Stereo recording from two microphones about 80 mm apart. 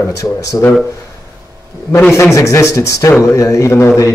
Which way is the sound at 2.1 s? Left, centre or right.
Left.